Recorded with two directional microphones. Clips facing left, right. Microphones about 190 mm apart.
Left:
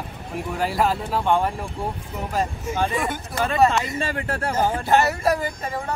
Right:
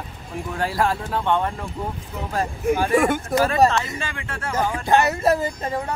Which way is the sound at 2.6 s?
60° right (ahead or behind).